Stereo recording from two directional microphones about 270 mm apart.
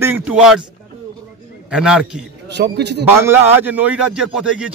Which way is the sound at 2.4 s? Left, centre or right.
Right.